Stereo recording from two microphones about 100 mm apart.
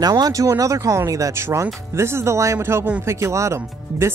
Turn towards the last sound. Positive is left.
turn(degrees=-25)  # may be behind; listen again after turning